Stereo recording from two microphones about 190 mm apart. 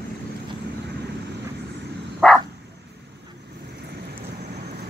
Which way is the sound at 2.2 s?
Centre (ahead or behind).